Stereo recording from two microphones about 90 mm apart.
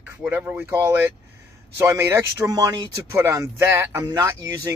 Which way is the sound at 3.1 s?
30° right (ahead or behind).